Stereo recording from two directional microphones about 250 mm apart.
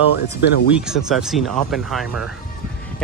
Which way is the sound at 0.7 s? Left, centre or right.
Centre.